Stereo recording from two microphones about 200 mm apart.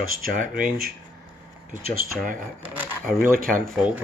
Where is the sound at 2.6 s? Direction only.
5° right (ahead or behind).